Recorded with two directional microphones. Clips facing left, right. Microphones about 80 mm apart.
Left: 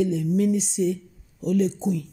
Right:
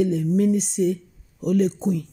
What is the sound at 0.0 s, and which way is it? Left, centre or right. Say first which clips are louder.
Speech: right 2 dB; right.